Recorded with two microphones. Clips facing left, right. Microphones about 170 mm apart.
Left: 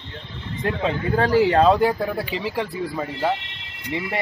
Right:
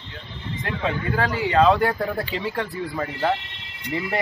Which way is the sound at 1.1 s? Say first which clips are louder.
Left 11 dB; 30° left (ahead or behind).